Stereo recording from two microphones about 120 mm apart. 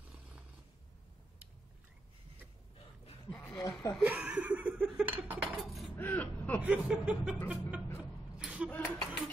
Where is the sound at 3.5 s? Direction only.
30° left (ahead or behind).